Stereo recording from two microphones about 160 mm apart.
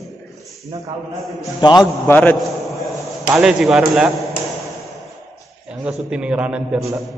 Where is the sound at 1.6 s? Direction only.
25° left (ahead or behind).